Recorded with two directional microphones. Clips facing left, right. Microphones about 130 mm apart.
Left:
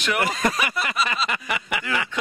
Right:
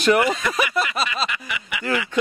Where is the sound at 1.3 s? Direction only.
45° left (ahead or behind).